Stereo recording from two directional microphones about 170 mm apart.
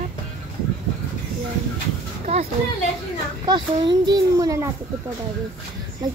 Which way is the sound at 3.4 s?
25° right (ahead or behind).